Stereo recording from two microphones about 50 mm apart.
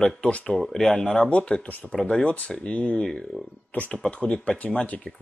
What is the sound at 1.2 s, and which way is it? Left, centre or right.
Speech, left.